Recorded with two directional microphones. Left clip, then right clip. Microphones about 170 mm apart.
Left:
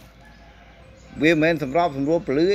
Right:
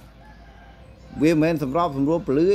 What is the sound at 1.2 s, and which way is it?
Speech, 45° right (ahead or behind).